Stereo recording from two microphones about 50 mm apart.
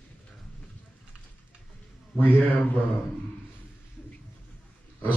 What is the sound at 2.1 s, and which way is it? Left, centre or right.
Speech, left.